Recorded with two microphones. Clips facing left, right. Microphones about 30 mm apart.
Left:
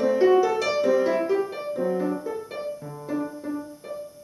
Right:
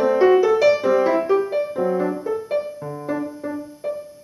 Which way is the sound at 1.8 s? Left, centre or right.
Centre.